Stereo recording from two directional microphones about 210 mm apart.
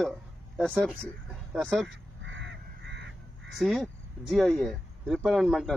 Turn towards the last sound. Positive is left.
turn(degrees=0)  # may be behind; listen again after turning